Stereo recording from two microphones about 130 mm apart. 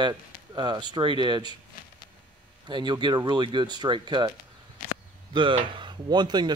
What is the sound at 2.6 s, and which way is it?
Speech, 35° right (ahead or behind).